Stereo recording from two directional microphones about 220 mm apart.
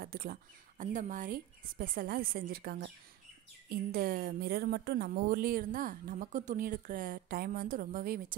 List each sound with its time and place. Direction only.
0.0 s a woman's voice: 45° right (ahead or behind)